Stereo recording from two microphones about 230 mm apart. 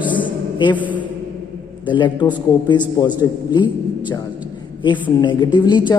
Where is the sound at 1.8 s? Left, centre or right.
Left.